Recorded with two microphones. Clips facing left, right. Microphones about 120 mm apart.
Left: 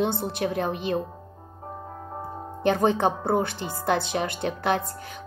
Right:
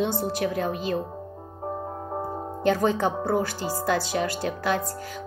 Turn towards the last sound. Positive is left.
turn(degrees=25)  # may be behind; listen again after turning